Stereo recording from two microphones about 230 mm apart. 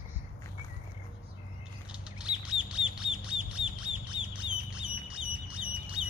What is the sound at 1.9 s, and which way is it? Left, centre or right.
Duck, centre.